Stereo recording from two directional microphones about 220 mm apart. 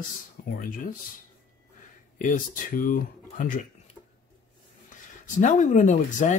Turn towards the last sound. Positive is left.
turn(degrees=35)  # may be behind; listen again after turning